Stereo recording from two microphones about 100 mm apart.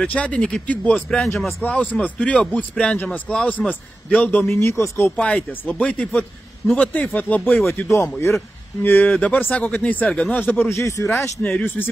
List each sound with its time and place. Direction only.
0.0 s a man's voice: 15° left (ahead or behind)
1.2 s speech: 5° left (ahead or behind)
1.6 s a man's voice: 15° left (ahead or behind)
5.1 s a man's voice: 10° left (ahead or behind)
7.7 s speech: 30° left (ahead or behind)
11.4 s speech: 20° left (ahead or behind)